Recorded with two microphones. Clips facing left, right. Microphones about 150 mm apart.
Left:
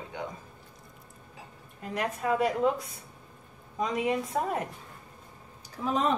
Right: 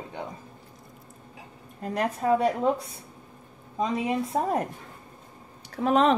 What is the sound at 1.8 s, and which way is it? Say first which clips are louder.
Speech: right 5 dB; 35° right (ahead or behind).